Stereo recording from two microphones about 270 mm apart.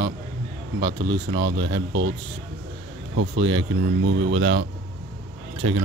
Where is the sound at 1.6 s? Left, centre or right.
Right.